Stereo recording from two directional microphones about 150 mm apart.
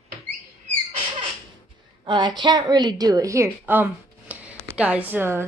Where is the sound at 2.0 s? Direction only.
30° right (ahead or behind).